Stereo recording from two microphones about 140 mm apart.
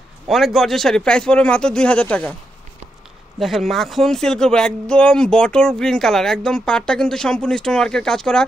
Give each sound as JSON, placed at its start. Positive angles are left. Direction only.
{"t": 0.3, "sound": "speech", "side_deg": 0}
{"t": 3.3, "sound": "speech", "side_deg": 0}